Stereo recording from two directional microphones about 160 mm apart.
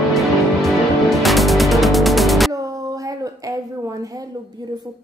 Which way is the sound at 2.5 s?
20° right (ahead or behind).